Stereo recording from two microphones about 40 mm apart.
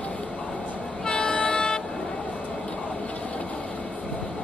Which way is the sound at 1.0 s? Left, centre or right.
Left.